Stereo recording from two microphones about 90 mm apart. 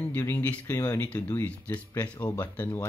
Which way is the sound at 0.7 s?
40° left (ahead or behind).